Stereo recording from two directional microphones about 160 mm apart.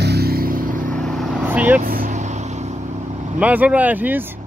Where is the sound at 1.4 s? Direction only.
10° right (ahead or behind).